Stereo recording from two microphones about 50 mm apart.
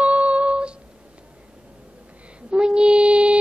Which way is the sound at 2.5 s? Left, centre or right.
Right.